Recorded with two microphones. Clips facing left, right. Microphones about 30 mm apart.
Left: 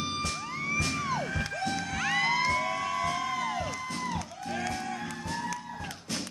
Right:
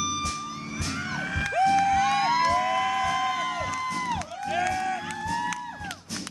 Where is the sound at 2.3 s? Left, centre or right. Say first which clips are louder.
Right 5 dB; right.